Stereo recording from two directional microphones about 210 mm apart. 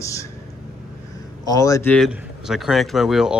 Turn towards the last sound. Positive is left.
turn(degrees=-5)  # may be behind; listen again after turning